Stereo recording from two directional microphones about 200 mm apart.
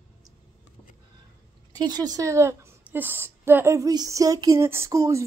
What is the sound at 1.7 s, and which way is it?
A woman's voice, 20° right (ahead or behind).